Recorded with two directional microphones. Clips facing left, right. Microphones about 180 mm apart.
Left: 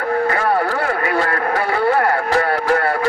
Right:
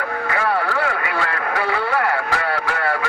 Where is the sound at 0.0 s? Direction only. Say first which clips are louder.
Left 5 dB; 40° left (ahead or behind).